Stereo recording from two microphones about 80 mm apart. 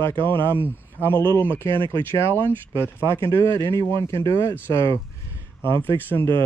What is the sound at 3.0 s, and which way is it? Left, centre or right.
Speech, right.